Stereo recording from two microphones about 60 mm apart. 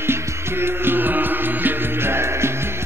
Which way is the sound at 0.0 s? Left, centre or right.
Right.